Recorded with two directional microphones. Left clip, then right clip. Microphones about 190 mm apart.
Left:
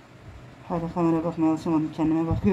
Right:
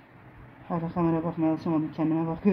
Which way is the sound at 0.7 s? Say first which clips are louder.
Left 3 dB; 5° right (ahead or behind).